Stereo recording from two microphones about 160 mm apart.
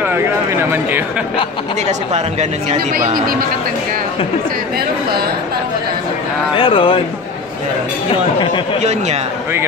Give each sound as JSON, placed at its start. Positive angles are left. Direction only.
{"t": 6.5, "sound": "speech", "side_deg": 35}
{"t": 8.8, "sound": "speech", "side_deg": -45}